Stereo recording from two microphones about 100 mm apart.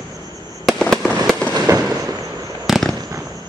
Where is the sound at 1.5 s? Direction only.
35° right (ahead or behind).